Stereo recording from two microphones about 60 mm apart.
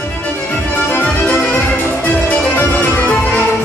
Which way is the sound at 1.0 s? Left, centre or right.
Left.